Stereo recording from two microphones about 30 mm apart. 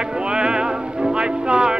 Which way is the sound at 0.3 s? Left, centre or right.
Right.